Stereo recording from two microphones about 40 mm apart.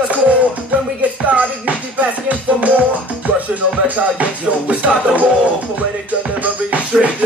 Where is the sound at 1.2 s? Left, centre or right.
Right.